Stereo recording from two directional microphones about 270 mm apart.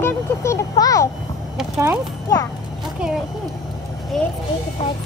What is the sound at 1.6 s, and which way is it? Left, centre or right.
Speech, centre.